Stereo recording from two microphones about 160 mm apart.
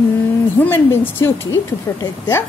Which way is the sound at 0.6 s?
10° left (ahead or behind).